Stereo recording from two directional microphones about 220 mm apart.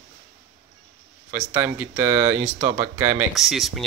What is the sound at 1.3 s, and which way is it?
Speech, 10° right (ahead or behind).